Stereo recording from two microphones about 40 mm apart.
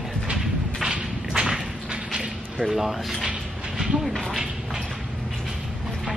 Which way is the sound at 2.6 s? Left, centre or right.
Centre.